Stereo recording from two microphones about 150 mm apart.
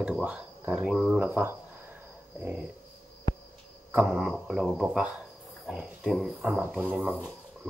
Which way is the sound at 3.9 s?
10° right (ahead or behind).